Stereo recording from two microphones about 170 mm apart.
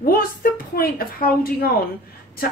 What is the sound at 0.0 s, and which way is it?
Speech, 60° left (ahead or behind).